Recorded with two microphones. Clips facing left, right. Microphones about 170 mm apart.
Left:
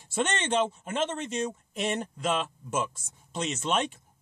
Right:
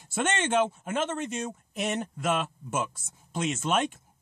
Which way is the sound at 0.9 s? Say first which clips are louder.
Even; 45° right (ahead or behind).